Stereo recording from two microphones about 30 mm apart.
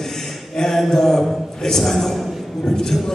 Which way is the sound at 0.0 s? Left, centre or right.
Centre.